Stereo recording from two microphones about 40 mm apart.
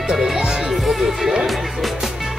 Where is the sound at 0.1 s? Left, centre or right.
Centre.